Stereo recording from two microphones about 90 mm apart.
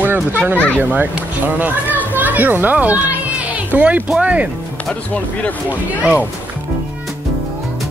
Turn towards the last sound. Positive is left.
turn(degrees=-10)  # may be behind; listen again after turning